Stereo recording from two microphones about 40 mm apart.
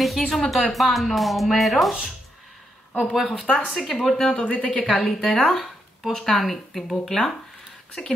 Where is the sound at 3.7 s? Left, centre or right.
Centre.